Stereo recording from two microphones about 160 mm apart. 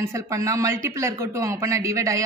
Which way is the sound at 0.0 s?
20° right (ahead or behind).